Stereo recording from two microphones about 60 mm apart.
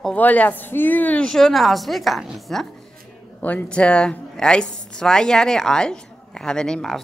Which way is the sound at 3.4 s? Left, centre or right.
Left.